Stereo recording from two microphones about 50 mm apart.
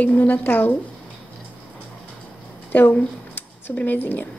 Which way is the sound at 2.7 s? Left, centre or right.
Left.